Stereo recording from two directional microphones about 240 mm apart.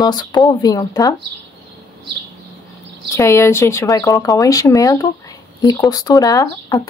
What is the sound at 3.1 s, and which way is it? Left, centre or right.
Speech, centre.